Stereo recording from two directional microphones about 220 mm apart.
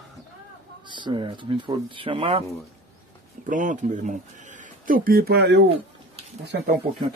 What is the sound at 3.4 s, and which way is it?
Speech, 35° right (ahead or behind).